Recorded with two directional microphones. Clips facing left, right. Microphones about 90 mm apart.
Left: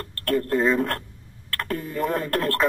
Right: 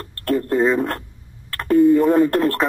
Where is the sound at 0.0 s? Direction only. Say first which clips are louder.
Right 3 dB; 15° right (ahead or behind).